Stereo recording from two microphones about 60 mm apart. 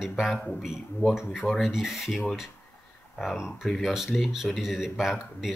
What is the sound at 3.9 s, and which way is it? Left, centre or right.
Speech, centre.